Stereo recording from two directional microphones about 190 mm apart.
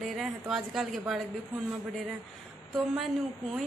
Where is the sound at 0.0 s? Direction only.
Centre (ahead or behind).